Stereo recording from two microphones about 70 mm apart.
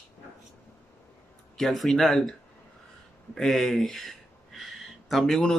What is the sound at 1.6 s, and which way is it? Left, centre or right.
Speech, centre.